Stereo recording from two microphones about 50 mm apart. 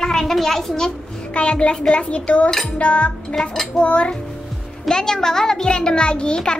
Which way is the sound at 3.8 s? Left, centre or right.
Left.